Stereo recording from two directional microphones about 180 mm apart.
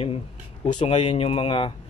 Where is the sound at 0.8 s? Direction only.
30° left (ahead or behind).